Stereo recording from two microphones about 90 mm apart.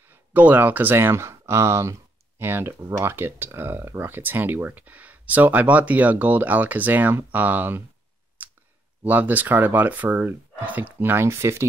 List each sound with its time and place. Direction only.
0.0 s speech: 20° right (ahead or behind)
9.0 s speech: 20° right (ahead or behind)